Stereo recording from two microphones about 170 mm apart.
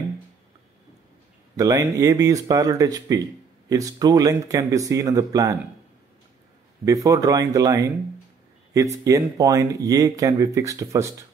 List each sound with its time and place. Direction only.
1.6 s speech: 20° right (ahead or behind)
6.8 s speech: 20° right (ahead or behind)
9.0 s speech: 20° right (ahead or behind)